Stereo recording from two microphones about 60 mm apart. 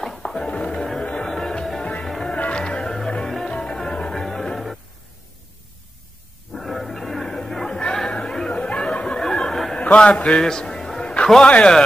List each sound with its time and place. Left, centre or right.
0.0 s music: centre
2.0 s music: centre
2.3 s music: left; by 4.7 s centre
6.6 s chatter: centre
9.8 s a sound: centre
11.4 s speech: left